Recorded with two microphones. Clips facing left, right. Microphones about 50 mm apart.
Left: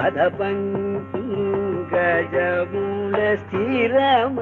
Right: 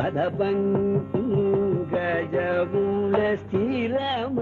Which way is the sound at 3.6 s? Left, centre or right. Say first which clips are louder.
Left 9 dB; left.